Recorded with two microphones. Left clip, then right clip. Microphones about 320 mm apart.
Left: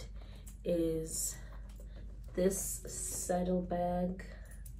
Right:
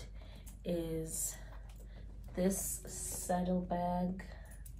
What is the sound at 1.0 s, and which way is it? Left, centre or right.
Speech, right.